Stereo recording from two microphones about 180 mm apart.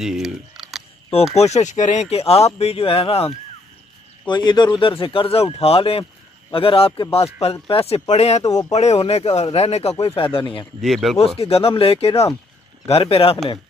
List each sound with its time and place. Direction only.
0.0 s camera: centre (ahead or behind)
1.3 s speech: 35° left (ahead or behind)
10.8 s speech: centre (ahead or behind)
11.1 s speech: 35° left (ahead or behind)